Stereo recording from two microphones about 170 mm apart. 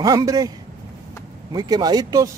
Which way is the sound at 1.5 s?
25° right (ahead or behind).